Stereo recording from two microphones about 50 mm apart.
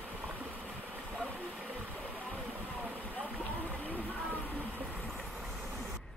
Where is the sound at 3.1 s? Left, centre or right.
Left.